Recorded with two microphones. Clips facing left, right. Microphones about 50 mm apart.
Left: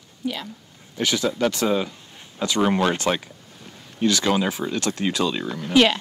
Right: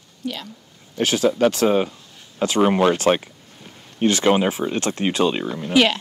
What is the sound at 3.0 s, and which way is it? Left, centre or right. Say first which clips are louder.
Speech: right 5 dB; right.